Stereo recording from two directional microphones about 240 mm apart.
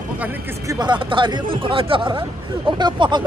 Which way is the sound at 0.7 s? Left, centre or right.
Centre.